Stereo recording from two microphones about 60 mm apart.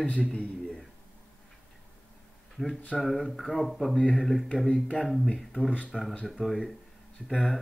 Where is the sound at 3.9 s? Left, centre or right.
Centre.